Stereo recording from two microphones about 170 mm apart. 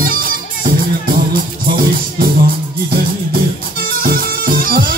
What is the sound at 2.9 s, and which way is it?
Music, 60° right (ahead or behind).